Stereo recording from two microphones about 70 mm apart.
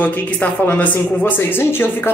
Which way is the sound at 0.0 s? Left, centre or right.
Left.